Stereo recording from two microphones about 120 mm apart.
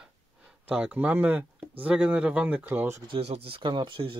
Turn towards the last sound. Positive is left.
turn(degrees=-45)  # may be behind; listen again after turning